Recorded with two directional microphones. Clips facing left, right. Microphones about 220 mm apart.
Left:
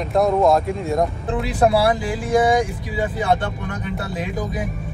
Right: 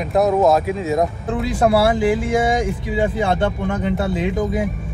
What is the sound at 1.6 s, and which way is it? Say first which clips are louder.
Speech: right 2 dB; 25° right (ahead or behind).